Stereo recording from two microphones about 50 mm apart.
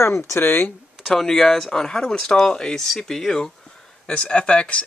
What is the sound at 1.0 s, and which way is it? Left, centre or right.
Speech, centre.